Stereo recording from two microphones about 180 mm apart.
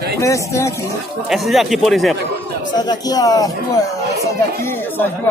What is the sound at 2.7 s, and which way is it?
Speech, 25° left (ahead or behind).